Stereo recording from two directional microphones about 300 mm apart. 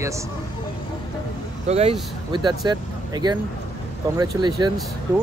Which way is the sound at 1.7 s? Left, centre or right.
Centre.